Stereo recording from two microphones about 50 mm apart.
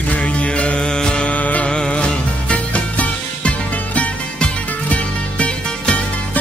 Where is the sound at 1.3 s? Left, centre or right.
Left.